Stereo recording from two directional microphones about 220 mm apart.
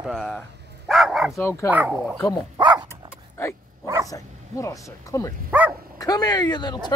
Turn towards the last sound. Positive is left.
turn(degrees=20)  # may be behind; listen again after turning